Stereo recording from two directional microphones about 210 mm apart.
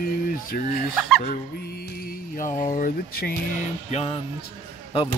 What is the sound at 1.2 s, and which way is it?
Speech, 45° left (ahead or behind).